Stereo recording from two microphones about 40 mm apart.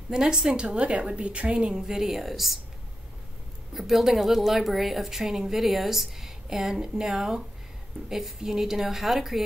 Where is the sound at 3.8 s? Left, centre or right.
Centre.